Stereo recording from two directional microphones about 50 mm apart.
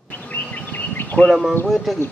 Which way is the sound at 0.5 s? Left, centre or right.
Left.